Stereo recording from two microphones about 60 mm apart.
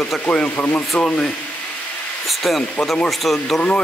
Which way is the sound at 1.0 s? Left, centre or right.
Centre.